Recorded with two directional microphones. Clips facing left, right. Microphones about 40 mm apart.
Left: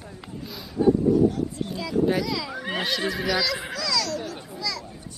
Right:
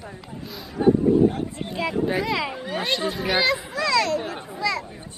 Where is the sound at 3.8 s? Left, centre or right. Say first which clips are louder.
Right 6 dB; right.